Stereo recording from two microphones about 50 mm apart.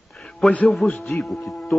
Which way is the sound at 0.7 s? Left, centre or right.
Centre.